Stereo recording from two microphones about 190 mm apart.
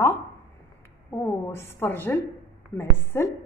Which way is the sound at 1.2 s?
10° left (ahead or behind).